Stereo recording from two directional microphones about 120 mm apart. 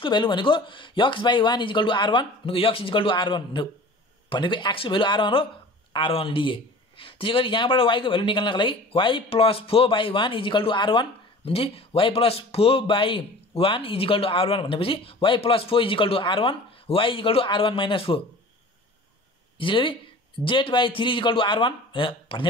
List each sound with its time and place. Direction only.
0.0 s speech: 40° left (ahead or behind)
19.6 s speech: 45° left (ahead or behind)